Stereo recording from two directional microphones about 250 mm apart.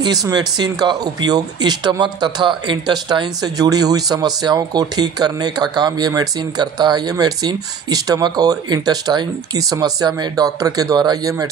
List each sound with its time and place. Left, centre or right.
0.0 s speech: centre